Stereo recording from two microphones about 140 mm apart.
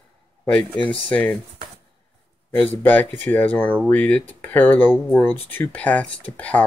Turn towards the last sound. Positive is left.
turn(degrees=10)  # may be behind; listen again after turning